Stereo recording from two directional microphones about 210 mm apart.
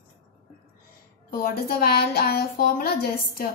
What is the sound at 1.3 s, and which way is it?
A woman's voice, 45° left (ahead or behind).